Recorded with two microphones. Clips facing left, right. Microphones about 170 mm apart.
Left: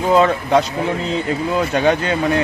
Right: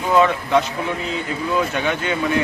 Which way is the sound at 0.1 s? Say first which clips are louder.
Left 2 dB; 35° left (ahead or behind).